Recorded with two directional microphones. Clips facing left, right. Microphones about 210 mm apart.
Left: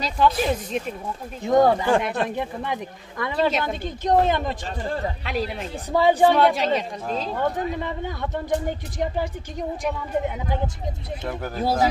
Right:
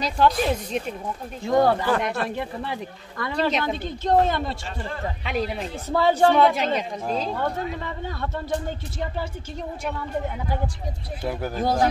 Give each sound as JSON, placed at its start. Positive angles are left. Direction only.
{"t": 0.0, "sound": "speech", "side_deg": 0}
{"t": 1.4, "sound": "speech", "side_deg": 20}
{"t": 3.3, "sound": "speech", "side_deg": 0}
{"t": 3.8, "sound": "speech", "side_deg": 15}
{"t": 5.2, "sound": "speech", "side_deg": 0}
{"t": 5.9, "sound": "speech", "side_deg": 15}
{"t": 6.3, "sound": "speech", "side_deg": 0}
{"t": 8.2, "sound": "speech", "side_deg": 15}
{"t": 11.5, "sound": "speech", "side_deg": 5}